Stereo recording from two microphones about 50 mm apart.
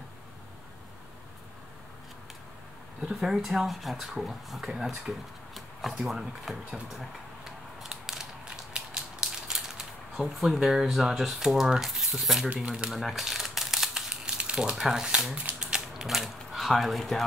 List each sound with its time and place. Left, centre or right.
3.1 s speech: centre
7.9 s crushing: centre
8.5 s a sound: right; by 12.4 s centre
12.6 s speech: centre
12.9 s crumpling: centre; by 14.8 s right
14.8 s speech: centre
15.6 s a sound: centre
16.1 s speech: centre